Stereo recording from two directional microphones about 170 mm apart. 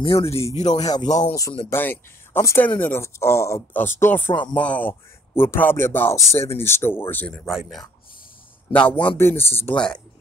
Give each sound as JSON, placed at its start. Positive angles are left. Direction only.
{"t": 0.0, "sound": "speech", "side_deg": 35}
{"t": 0.7, "sound": "speech", "side_deg": 25}